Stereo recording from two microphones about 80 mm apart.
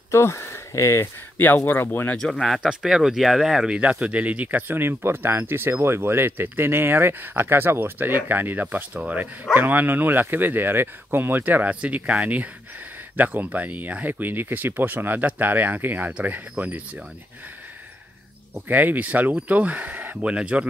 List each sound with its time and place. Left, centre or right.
0.1 s speech: left
2.1 s speech: centre
2.6 s speech: centre
18.7 s speech: right